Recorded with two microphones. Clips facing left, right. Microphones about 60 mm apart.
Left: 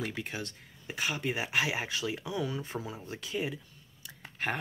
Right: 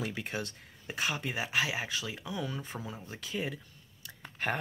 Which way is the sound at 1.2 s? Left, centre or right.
Centre.